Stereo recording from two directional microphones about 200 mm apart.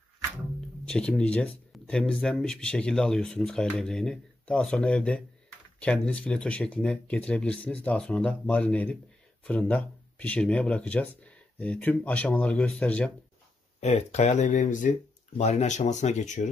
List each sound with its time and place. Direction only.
0.8 s speech: 5° left (ahead or behind)
13.7 s speech: 35° left (ahead or behind)